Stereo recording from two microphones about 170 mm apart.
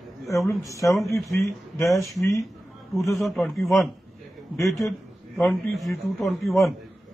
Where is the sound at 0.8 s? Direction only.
15° left (ahead or behind).